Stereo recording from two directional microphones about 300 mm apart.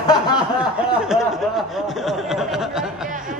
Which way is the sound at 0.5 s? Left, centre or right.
Centre.